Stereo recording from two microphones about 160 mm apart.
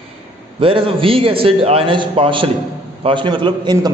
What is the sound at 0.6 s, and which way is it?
A man's voice, 35° right (ahead or behind).